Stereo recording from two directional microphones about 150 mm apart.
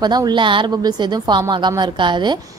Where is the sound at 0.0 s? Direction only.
25° right (ahead or behind).